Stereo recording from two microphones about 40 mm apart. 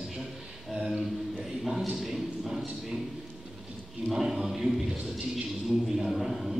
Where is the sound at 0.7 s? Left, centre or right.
Centre.